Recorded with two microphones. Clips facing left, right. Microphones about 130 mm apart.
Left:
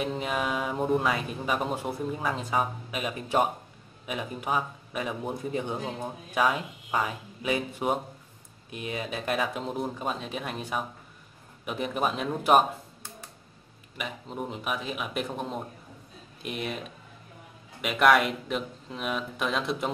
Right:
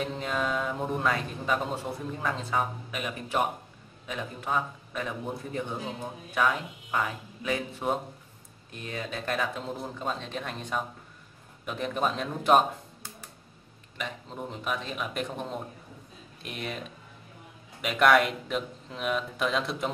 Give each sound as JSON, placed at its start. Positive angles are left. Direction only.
{"t": 0.0, "sound": "speech", "side_deg": 10}
{"t": 13.9, "sound": "speech", "side_deg": 5}
{"t": 17.8, "sound": "speech", "side_deg": 0}